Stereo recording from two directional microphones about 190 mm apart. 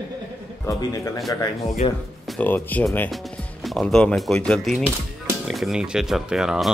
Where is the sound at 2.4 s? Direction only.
10° left (ahead or behind).